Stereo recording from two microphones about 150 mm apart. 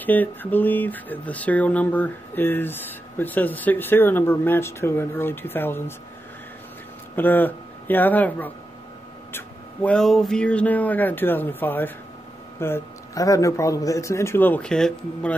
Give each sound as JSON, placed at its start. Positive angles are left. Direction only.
{"t": 0.0, "sound": "speech", "side_deg": 10}
{"t": 7.2, "sound": "speech", "side_deg": 10}